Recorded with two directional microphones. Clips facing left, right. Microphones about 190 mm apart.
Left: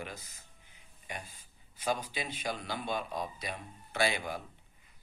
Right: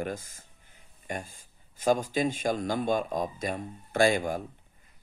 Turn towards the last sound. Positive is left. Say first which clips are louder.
# right 8 dB
turn(degrees=-45)  # may be behind; listen again after turning